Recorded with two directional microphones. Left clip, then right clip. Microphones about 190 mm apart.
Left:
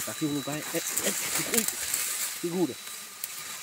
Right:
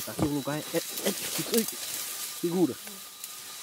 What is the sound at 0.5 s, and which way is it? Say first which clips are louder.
Speech: right 1 dB; 25° right (ahead or behind).